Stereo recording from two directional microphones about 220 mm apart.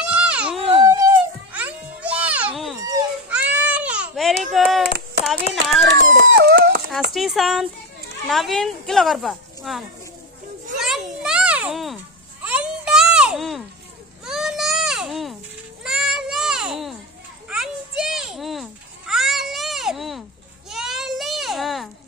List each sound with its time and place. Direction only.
0.0 s music: 5° right (ahead or behind)
0.8 s music: 15° right (ahead or behind)
3.3 s baby cry: 5° right (ahead or behind)
5.9 s dog: 50° right (ahead or behind)
7.2 s speech: centre (ahead or behind)
10.8 s children playing: 5° right (ahead or behind)
12.4 s a sound: 5° right (ahead or behind)
15.8 s goat: centre (ahead or behind)
17.5 s children playing: 5° right (ahead or behind)